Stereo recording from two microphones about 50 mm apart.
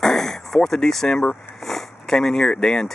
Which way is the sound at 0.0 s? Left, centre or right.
Centre.